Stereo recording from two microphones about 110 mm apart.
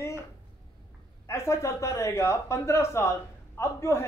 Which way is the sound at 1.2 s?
25° left (ahead or behind).